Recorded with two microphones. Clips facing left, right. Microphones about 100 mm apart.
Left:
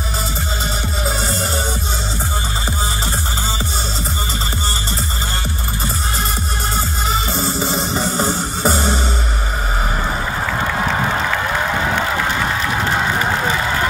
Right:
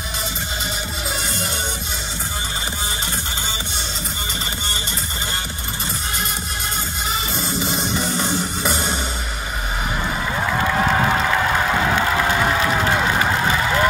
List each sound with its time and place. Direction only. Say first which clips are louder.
1.0 s music: left 5 dB; 35° left (ahead or behind)
7.1 s music: left 4 dB; 35° left (ahead or behind)